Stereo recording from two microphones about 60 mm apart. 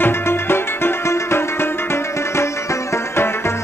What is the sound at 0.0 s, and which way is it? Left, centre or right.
Music, left.